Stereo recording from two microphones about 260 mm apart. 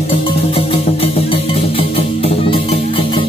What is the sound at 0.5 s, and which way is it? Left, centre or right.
Music, left.